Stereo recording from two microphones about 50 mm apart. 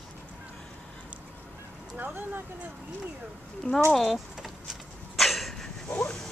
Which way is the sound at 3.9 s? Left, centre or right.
Centre.